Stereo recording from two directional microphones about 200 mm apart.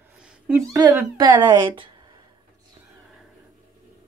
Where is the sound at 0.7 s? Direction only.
15° right (ahead or behind).